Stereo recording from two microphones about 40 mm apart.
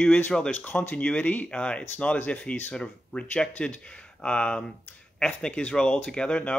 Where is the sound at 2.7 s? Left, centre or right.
Left.